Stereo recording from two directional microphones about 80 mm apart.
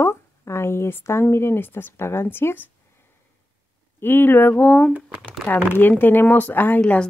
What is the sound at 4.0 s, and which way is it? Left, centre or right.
Speech, left.